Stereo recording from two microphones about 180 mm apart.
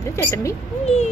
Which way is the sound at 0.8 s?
35° left (ahead or behind).